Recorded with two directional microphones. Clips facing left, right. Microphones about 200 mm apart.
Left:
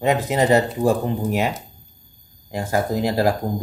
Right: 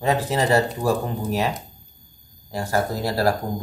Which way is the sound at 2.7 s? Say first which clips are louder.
Left 3 dB; 15° left (ahead or behind).